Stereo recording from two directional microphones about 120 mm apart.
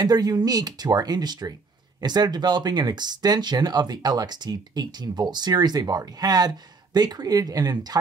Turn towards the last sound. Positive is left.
turn(degrees=-35)  # may be behind; listen again after turning